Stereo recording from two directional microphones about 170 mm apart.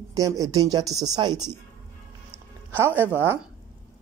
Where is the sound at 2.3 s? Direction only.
10° right (ahead or behind).